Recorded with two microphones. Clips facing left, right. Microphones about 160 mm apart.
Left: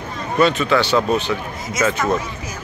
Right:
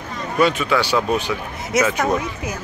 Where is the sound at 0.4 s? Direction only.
10° right (ahead or behind).